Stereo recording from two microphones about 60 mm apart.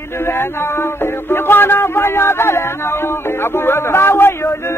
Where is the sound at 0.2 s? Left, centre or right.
Left.